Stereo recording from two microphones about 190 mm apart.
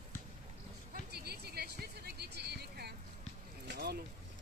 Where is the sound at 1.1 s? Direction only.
55° right (ahead or behind).